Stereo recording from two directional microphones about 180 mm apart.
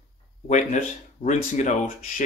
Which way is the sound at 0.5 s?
40° left (ahead or behind).